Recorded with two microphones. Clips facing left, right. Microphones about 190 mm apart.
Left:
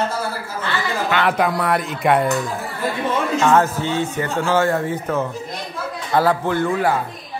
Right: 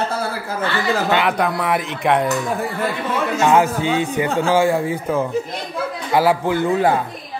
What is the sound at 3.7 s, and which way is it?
Speech, 15° right (ahead or behind).